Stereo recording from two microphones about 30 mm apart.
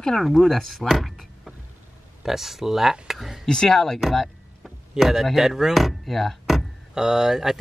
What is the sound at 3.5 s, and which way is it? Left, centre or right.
Speech, left.